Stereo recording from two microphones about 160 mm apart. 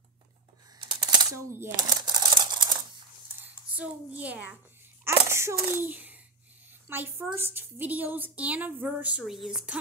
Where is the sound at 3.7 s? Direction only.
10° right (ahead or behind).